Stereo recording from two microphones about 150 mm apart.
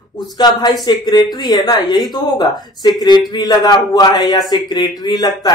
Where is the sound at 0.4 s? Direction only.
30° left (ahead or behind).